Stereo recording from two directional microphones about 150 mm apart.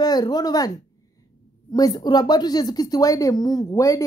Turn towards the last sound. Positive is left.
turn(degrees=20)  # may be behind; listen again after turning